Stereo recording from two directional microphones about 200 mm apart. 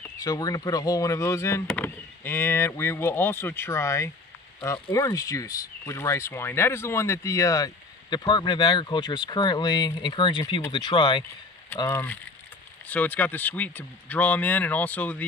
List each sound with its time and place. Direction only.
0.2 s speech: 20° left (ahead or behind)
11.8 s speech: 10° left (ahead or behind)